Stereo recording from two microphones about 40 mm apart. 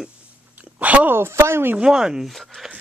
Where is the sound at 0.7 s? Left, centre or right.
Right.